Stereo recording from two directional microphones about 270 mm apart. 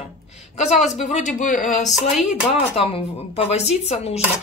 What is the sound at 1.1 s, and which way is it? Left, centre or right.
Speech, left.